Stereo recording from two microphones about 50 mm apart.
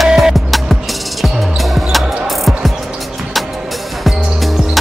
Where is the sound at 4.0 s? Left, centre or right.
Centre.